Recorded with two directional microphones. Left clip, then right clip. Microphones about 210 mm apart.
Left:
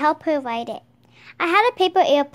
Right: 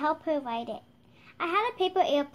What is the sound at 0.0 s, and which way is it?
A woman's voice, 50° left (ahead or behind).